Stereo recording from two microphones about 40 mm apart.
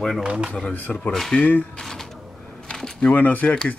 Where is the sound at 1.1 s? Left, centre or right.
Centre.